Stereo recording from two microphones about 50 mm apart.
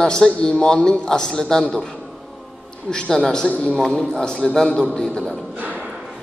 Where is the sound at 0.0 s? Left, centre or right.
Centre.